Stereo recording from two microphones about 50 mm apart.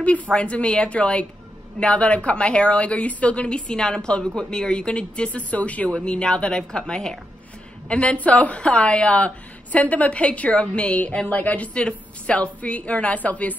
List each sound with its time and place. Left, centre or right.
0.0 s a woman's voice: left
5.9 s a woman's voice: centre